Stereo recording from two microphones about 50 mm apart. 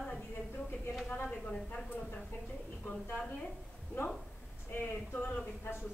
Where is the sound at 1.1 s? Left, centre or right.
Left.